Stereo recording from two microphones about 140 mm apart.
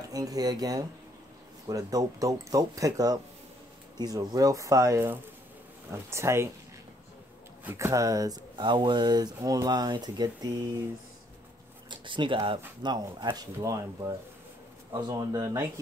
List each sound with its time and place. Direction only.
0.1 s speech: 25° right (ahead or behind)
7.6 s speech: 20° right (ahead or behind)
11.9 s speech: 35° right (ahead or behind)